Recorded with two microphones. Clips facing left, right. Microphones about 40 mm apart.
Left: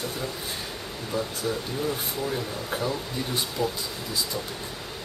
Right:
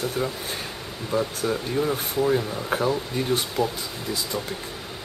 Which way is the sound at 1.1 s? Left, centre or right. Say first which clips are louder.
Right 4 dB; right.